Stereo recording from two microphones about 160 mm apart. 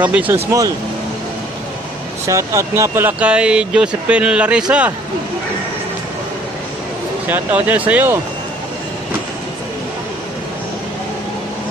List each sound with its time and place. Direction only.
0.0 s speech: 10° right (ahead or behind)
2.2 s speech: 20° right (ahead or behind)
7.2 s speech: 10° right (ahead or behind)